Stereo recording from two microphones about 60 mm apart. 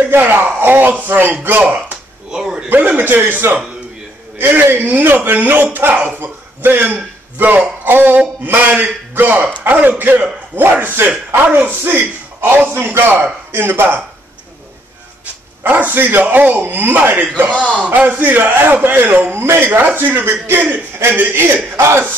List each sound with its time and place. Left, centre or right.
0.0 s a man's voice: right
2.3 s a sound: centre
3.0 s a man's voice: right
7.8 s a sound: right
8.5 s a man's voice: right
15.6 s a man's voice: right
21.7 s speech: right